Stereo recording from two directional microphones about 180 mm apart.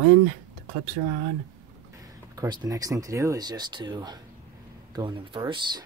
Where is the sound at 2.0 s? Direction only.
20° right (ahead or behind).